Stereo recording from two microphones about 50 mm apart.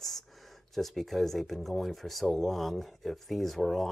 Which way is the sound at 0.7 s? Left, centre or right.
Centre.